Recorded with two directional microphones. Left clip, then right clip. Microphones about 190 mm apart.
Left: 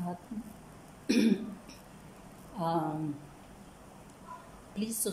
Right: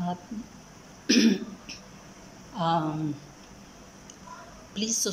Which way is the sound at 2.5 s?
15° left (ahead or behind).